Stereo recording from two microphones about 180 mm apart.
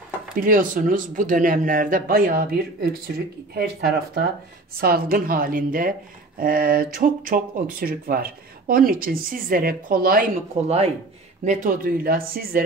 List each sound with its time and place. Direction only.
0.4 s speech: 50° right (ahead or behind)
10.6 s speech: 35° right (ahead or behind)
11.4 s speech: 50° right (ahead or behind)